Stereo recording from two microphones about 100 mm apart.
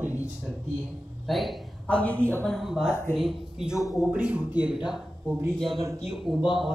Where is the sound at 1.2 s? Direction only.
Centre (ahead or behind).